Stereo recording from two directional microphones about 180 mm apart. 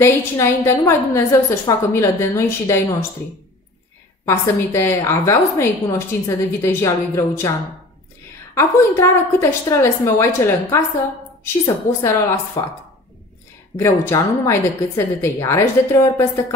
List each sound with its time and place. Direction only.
0.0 s a woman's voice: 15° left (ahead or behind)
4.8 s a woman's voice: 15° left (ahead or behind)
8.5 s a woman's voice: 15° left (ahead or behind)
13.7 s a woman's voice: 15° left (ahead or behind)